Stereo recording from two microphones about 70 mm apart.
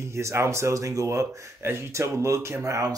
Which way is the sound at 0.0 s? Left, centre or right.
Right.